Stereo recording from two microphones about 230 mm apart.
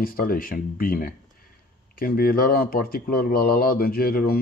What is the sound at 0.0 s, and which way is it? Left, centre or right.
Speech, left.